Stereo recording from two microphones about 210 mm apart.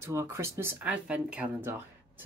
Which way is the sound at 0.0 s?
10° right (ahead or behind).